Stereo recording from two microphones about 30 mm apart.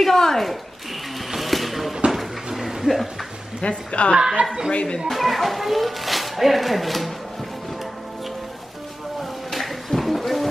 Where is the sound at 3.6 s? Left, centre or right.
Left.